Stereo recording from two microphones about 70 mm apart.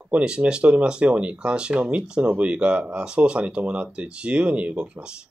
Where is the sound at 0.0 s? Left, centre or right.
Centre.